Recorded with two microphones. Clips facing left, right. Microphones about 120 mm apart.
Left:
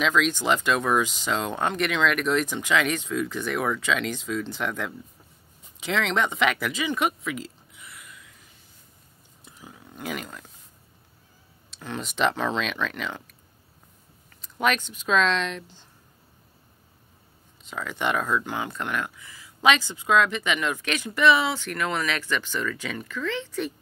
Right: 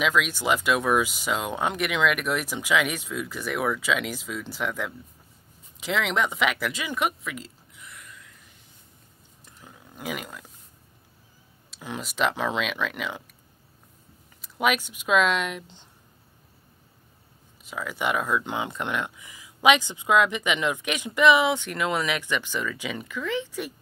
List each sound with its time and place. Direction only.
0.0 s speech: 10° right (ahead or behind)
9.4 s a sound: 5° left (ahead or behind)
11.7 s speech: 5° right (ahead or behind)
14.4 s speech: 10° right (ahead or behind)
17.6 s speech: 5° right (ahead or behind)
18.4 s speech: 20° right (ahead or behind)